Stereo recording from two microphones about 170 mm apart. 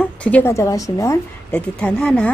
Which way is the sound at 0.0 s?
5° left (ahead or behind).